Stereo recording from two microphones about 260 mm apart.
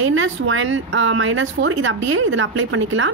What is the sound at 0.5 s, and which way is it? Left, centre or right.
A woman's voice, right.